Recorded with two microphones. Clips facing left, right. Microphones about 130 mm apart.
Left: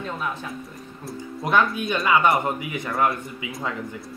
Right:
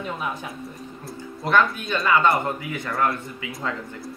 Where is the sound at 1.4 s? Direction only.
15° left (ahead or behind).